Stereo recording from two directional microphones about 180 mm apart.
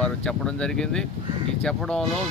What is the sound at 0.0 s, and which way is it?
Speech, 5° left (ahead or behind).